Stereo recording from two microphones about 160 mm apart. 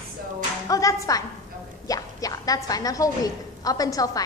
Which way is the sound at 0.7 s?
20° left (ahead or behind).